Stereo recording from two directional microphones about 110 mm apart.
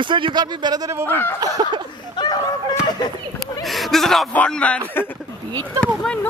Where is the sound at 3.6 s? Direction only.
Centre (ahead or behind).